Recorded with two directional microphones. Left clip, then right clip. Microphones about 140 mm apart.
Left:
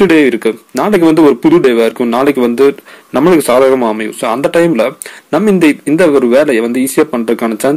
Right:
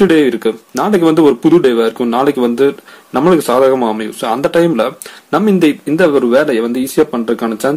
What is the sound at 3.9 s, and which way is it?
Speech, 5° left (ahead or behind).